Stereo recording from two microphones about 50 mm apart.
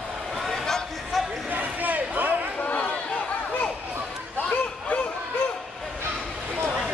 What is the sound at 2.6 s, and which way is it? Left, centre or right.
Chatter, left.